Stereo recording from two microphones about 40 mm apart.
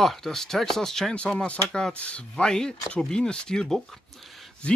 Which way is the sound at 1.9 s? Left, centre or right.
Left.